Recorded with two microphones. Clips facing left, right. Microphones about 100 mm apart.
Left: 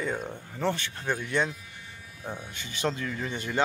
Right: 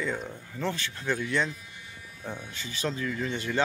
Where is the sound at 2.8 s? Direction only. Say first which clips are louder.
Left 1 dB; 25° left (ahead or behind).